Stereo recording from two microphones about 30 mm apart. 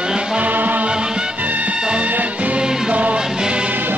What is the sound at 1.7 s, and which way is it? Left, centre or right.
Music, right.